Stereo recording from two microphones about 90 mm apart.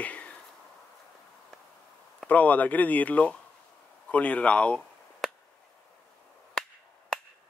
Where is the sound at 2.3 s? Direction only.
15° left (ahead or behind).